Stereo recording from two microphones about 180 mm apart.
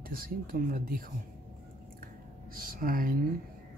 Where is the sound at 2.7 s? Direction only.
50° right (ahead or behind).